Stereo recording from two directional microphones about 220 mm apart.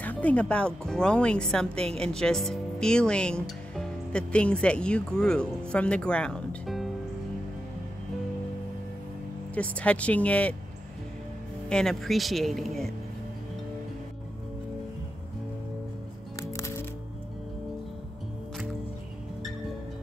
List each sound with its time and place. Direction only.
0.0 s speech: 5° left (ahead or behind)
9.6 s speech: 5° left (ahead or behind)
11.7 s speech: centre (ahead or behind)
16.3 s music: 15° left (ahead or behind)